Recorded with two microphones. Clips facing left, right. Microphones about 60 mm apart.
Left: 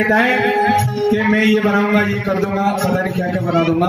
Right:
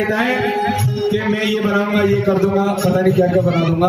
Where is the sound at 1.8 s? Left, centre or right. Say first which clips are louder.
Even; left.